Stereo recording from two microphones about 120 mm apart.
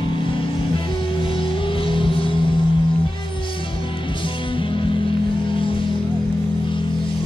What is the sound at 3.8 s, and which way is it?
Music, 45° left (ahead or behind).